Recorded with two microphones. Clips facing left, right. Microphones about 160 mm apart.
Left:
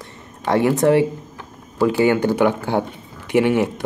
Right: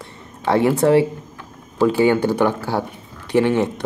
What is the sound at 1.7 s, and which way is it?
Speech, 10° left (ahead or behind).